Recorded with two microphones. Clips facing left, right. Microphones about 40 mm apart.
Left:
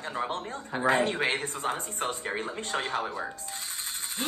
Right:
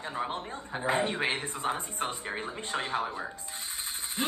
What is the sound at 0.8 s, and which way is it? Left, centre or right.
Speech, left.